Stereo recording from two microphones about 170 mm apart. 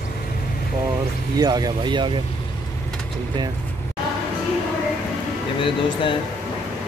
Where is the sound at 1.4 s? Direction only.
25° right (ahead or behind).